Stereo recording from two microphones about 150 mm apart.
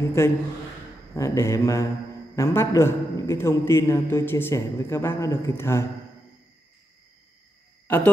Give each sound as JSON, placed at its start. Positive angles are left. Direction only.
{"t": 0.2, "sound": "a man's voice", "side_deg": 15}
{"t": 1.1, "sound": "mantra", "side_deg": 20}
{"t": 2.3, "sound": "a man's voice", "side_deg": 20}